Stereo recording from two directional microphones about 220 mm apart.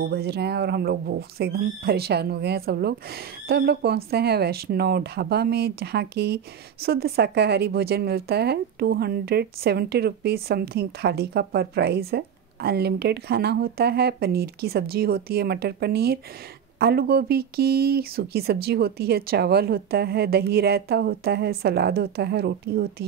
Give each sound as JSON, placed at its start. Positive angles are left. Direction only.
{"t": 0.0, "sound": "speech", "side_deg": -45}